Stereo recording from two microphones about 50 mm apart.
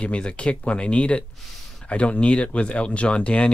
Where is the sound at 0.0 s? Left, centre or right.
Left.